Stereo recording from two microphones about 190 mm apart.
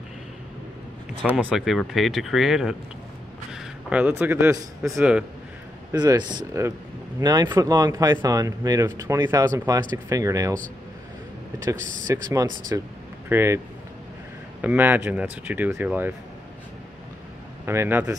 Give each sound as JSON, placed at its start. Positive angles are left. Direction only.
{"t": 1.3, "sound": "a man's voice", "side_deg": 0}
{"t": 5.9, "sound": "speech", "side_deg": -20}
{"t": 12.1, "sound": "speech", "side_deg": -20}
{"t": 14.6, "sound": "speech", "side_deg": -10}
{"t": 17.6, "sound": "speech", "side_deg": -10}